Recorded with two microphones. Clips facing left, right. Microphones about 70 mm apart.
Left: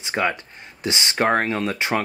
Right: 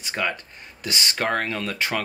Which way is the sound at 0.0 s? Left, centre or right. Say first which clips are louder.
Left 4 dB; left.